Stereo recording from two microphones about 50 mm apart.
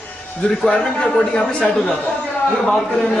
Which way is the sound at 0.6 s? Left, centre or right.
Centre.